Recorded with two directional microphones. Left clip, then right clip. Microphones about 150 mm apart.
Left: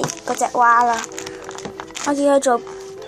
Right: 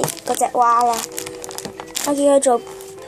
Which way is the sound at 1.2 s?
35° right (ahead or behind).